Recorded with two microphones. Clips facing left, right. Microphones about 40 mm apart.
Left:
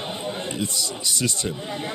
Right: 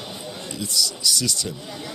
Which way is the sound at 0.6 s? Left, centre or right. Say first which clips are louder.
Right 2 dB; left.